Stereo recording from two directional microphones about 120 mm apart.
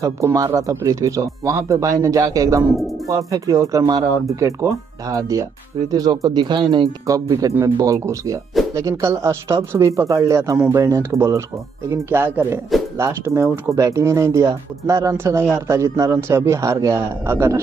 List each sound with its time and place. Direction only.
0.0 s speech: 25° right (ahead or behind)
7.1 s speech: 30° right (ahead or behind)